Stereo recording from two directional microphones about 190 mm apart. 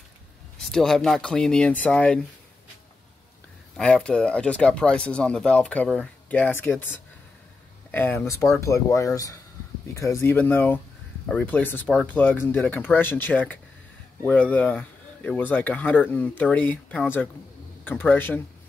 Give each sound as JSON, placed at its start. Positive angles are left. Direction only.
{"t": 0.6, "sound": "speech", "side_deg": 0}
{"t": 3.7, "sound": "speech", "side_deg": 5}